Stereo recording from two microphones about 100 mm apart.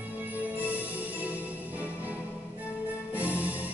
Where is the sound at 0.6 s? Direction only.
15° right (ahead or behind).